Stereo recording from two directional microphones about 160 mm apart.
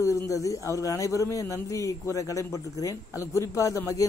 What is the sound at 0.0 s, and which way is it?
Speech, 20° left (ahead or behind).